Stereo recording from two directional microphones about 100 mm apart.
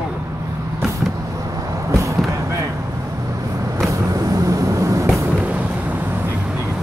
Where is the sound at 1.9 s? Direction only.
30° right (ahead or behind).